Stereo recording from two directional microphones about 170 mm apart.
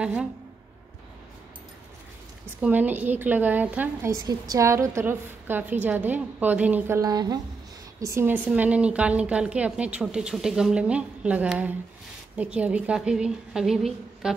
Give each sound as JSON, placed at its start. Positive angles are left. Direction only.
{"t": 0.0, "sound": "a woman's voice", "side_deg": -5}
{"t": 2.6, "sound": "a woman's voice", "side_deg": -10}
{"t": 7.0, "sound": "a woman's voice", "side_deg": -20}